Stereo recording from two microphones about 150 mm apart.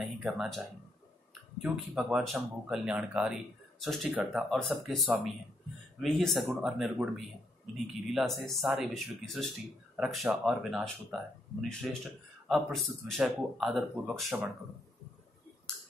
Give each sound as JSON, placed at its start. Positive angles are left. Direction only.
{"t": 0.2, "sound": "speech", "side_deg": 0}